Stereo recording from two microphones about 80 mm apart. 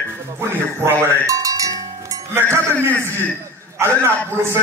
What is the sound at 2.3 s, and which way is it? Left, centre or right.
A man's voice, right.